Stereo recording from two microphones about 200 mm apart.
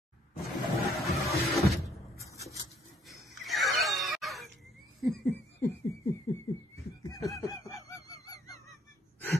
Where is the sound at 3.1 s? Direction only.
Centre (ahead or behind).